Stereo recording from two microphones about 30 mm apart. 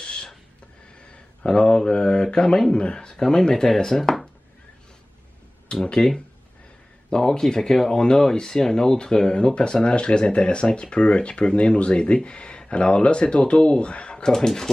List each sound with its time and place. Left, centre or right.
0.0 s a sound: left
1.6 s speech: left
3.2 s speech: left; by 4.3 s centre
5.7 s speech: left
7.1 s speech: centre; by 14.2 s left
14.2 s speech: centre